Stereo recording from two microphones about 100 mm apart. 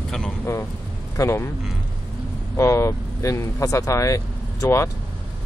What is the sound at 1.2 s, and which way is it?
Speech, 30° left (ahead or behind).